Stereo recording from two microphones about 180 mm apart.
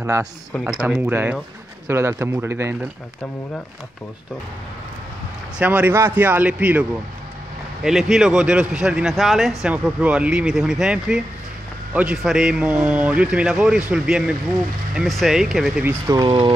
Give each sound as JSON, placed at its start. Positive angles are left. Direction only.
{"t": 0.0, "sound": "a man's voice", "side_deg": -15}
{"t": 0.5, "sound": "a man's voice", "side_deg": -5}
{"t": 5.6, "sound": "a man's voice", "side_deg": -10}